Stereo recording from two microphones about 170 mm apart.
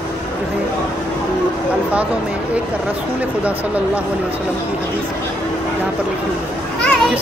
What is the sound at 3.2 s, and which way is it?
Speech, 10° right (ahead or behind).